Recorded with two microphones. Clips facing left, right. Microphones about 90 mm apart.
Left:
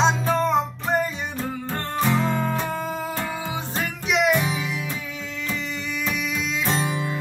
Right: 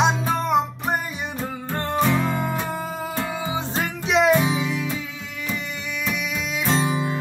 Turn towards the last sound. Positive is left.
turn(degrees=-5)  # may be behind; listen again after turning